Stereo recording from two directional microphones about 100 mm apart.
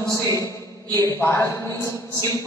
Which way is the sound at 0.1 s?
30° left (ahead or behind).